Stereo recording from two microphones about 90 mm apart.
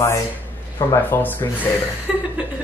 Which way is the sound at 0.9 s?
20° left (ahead or behind).